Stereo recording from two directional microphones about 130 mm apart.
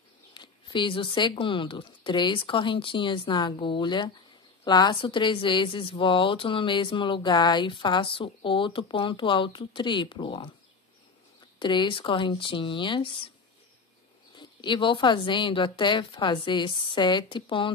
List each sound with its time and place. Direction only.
0.3 s a woman's voice: 35° left (ahead or behind)
11.6 s a woman's voice: 35° left (ahead or behind)
14.3 s a woman's voice: 35° left (ahead or behind)